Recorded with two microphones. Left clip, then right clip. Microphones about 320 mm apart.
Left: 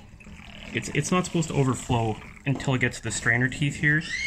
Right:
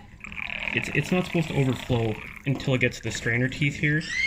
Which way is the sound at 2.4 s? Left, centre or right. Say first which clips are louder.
Right 1 dB; centre.